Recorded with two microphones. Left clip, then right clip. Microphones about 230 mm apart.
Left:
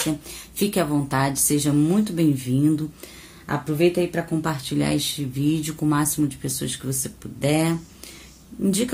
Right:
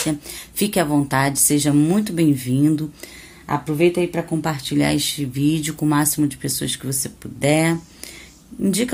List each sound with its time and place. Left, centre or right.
0.3 s speech: right